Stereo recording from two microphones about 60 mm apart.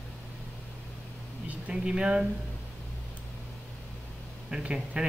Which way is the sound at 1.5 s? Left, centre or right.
Centre.